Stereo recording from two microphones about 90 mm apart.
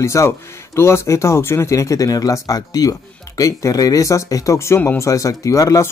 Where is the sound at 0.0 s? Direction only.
35° left (ahead or behind).